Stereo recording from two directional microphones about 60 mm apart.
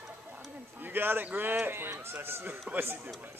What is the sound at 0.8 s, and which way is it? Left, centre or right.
Speech, right.